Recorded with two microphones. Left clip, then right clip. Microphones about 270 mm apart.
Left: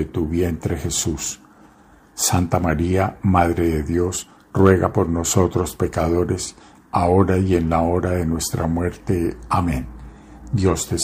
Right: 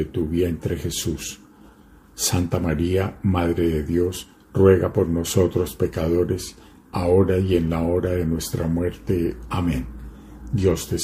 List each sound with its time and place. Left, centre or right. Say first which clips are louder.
0.1 s speech: left 1 dB; centre
2.1 s speech: left 4 dB; centre